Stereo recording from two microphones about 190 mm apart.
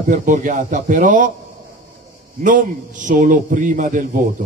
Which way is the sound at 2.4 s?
45° right (ahead or behind).